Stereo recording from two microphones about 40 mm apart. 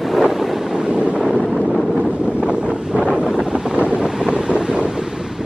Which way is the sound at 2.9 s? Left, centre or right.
Right.